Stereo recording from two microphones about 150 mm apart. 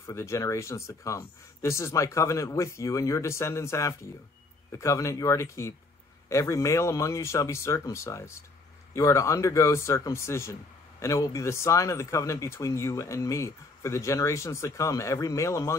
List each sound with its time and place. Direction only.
0.0 s speech: 20° left (ahead or behind)